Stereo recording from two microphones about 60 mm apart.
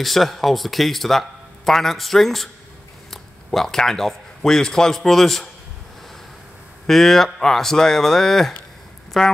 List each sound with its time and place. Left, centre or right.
0.0 s a man's voice: centre
6.9 s speech: centre